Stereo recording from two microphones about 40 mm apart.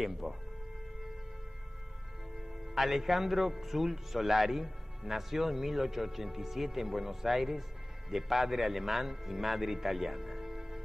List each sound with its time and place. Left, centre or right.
0.0 s a man's voice: centre
2.7 s a man's voice: centre